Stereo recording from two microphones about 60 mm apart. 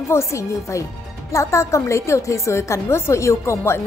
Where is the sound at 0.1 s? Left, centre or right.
Left.